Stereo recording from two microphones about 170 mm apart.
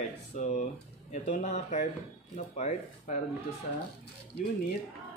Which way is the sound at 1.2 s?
40° left (ahead or behind).